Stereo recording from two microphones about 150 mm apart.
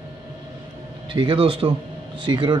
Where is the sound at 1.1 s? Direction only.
35° right (ahead or behind).